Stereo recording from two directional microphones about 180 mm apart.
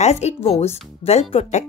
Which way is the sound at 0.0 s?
40° left (ahead or behind).